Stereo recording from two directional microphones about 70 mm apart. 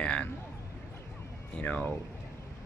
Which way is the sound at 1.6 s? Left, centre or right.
Left.